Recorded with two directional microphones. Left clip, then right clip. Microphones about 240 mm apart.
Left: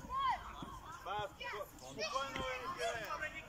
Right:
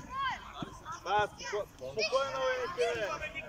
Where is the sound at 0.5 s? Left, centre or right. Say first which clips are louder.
Right 6 dB; right.